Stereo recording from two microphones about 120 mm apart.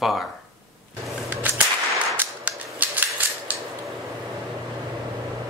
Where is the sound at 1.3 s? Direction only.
15° right (ahead or behind).